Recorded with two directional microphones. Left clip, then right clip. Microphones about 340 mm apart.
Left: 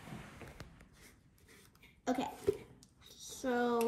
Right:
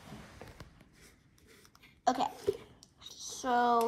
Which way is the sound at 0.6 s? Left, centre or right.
Centre.